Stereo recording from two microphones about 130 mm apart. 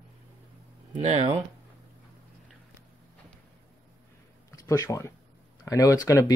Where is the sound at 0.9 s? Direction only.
55° right (ahead or behind).